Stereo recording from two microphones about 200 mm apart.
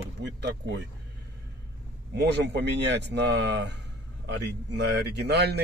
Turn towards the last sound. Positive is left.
turn(degrees=-55)  # may be behind; listen again after turning